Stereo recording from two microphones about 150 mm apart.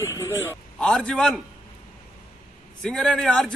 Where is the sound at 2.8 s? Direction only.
5° left (ahead or behind).